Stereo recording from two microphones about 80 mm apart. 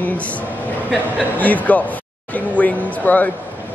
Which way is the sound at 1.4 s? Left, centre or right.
Centre.